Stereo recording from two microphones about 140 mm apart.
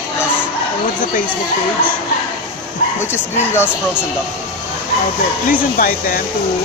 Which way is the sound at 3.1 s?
15° left (ahead or behind).